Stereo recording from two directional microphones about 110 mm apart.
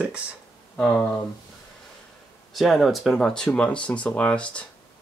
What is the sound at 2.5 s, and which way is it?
Speech, centre (ahead or behind).